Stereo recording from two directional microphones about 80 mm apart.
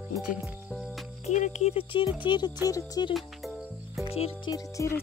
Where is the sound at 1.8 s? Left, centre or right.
Left.